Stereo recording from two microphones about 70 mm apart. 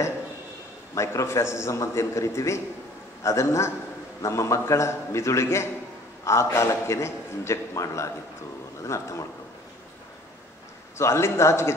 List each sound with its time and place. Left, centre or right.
0.9 s a man's voice: left
11.0 s a man's voice: left